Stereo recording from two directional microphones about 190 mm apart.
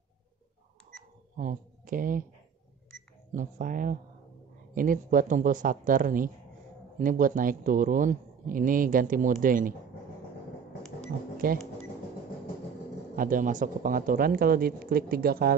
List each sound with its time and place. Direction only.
1.3 s speech: 45° right (ahead or behind)
3.3 s speech: 40° right (ahead or behind)
11.4 s speech: 50° right (ahead or behind)
13.1 s speech: 45° right (ahead or behind)